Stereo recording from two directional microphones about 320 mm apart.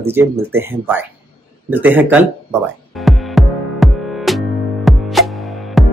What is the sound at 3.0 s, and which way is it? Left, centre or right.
Music, centre.